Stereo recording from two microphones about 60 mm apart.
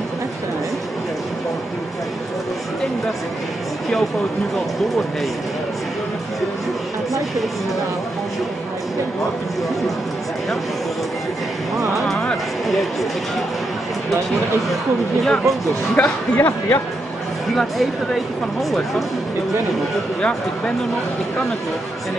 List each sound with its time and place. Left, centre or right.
15.2 s speech: centre
16.0 s speech: left
17.6 s speech: centre
20.2 s speech: centre